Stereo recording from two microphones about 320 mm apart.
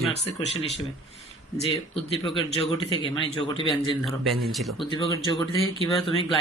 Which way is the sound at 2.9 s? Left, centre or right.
Centre.